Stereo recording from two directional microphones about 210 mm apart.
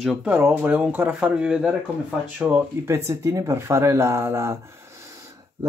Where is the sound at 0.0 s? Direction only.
5° right (ahead or behind).